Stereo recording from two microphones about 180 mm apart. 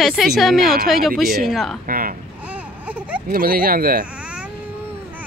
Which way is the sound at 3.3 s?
55° right (ahead or behind).